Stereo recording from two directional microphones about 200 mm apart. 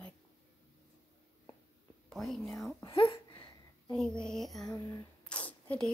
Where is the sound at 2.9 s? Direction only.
25° left (ahead or behind).